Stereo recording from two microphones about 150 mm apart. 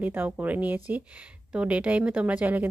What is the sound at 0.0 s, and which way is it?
Speech, 10° right (ahead or behind).